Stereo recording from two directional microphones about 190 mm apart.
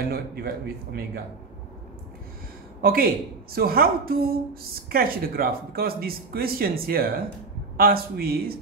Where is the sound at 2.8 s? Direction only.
50° right (ahead or behind).